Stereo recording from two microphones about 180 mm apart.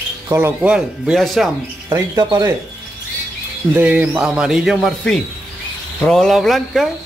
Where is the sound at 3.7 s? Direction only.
10° right (ahead or behind).